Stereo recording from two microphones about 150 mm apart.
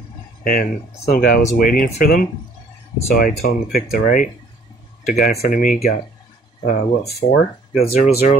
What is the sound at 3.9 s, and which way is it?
Speech, 60° left (ahead or behind).